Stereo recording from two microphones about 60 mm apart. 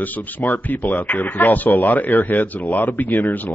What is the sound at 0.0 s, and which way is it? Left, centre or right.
Speech, left.